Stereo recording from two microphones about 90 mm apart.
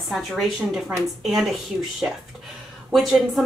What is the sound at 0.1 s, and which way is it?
Speech, centre (ahead or behind).